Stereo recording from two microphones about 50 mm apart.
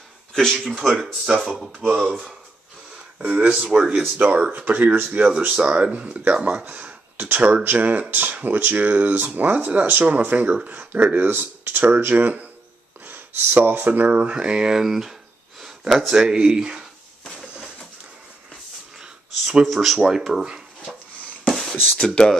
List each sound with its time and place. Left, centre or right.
0.3 s speech: centre
3.2 s speech: right
3.7 s speech: centre
4.2 s speech: right
7.2 s speech: right
7.6 s speech: right
14.3 s speech: centre
15.6 s gasp: centre
16.1 s speech: centre
18.9 s speech: centre
21.5 s a sound: centre
22.0 s speech: centre